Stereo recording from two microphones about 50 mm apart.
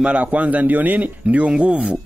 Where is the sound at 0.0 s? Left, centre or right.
Right.